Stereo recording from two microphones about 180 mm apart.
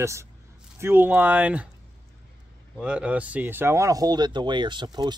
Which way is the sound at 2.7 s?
5° right (ahead or behind).